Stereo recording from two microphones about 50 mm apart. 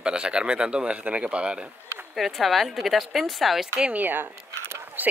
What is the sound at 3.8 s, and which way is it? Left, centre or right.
Speech, right.